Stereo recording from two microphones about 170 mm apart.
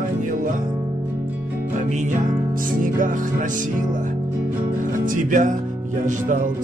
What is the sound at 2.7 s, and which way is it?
Music, 50° right (ahead or behind).